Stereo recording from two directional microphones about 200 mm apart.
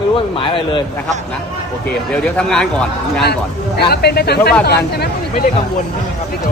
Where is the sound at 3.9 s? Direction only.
50° left (ahead or behind).